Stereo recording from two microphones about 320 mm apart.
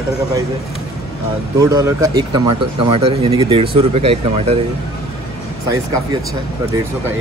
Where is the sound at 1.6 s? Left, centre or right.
Centre.